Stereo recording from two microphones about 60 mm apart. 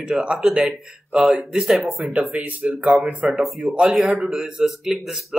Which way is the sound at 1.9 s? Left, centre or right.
Centre.